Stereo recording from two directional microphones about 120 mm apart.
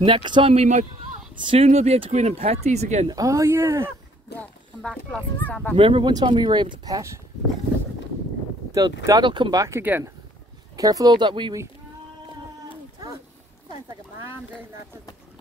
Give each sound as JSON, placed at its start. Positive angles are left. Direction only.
{"t": 0.0, "sound": "speech", "side_deg": -40}
{"t": 0.5, "sound": "speech", "side_deg": -70}
{"t": 1.3, "sound": "speech", "side_deg": -40}
{"t": 1.6, "sound": "speech", "side_deg": -65}
{"t": 3.1, "sound": "speech", "side_deg": -30}
{"t": 4.4, "sound": "speech", "side_deg": 10}
{"t": 5.8, "sound": "speech", "side_deg": -45}
{"t": 8.7, "sound": "speech", "side_deg": -30}
{"t": 9.2, "sound": "speech", "side_deg": -40}
{"t": 10.8, "sound": "speech", "side_deg": -30}